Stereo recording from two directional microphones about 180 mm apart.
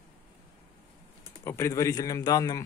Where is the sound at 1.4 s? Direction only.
15° left (ahead or behind).